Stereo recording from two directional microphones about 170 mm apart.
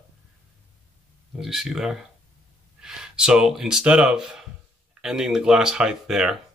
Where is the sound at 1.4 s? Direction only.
Centre (ahead or behind).